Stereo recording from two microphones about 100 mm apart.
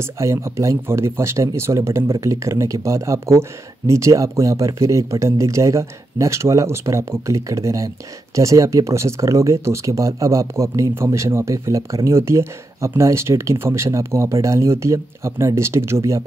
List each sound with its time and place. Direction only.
0.0 s speech: 30° right (ahead or behind)